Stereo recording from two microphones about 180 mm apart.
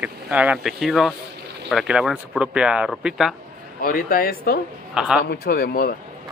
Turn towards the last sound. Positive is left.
turn(degrees=55)  # may be behind; listen again after turning